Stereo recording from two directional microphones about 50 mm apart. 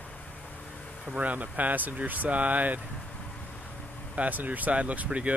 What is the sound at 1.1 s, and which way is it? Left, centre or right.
Speech, right.